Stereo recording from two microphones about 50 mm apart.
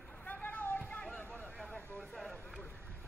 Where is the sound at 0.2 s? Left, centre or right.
Left.